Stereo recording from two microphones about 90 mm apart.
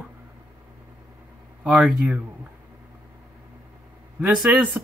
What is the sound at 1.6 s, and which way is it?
Speech, 5° right (ahead or behind).